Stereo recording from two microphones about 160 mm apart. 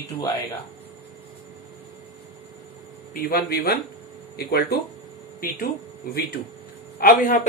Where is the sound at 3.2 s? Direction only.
75° left (ahead or behind).